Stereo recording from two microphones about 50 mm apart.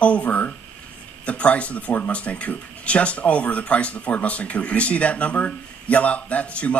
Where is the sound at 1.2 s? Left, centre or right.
Left.